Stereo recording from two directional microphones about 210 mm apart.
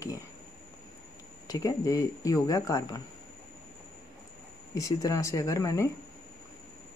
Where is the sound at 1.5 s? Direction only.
15° left (ahead or behind).